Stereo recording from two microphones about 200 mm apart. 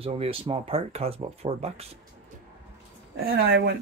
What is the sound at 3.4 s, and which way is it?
Speech, 65° right (ahead or behind).